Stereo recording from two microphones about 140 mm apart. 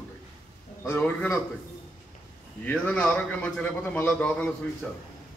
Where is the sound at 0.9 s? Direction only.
15° left (ahead or behind).